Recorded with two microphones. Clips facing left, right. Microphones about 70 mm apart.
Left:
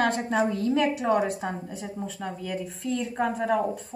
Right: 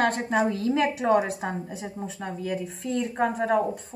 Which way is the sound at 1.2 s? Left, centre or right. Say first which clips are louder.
Left 1 dB; centre.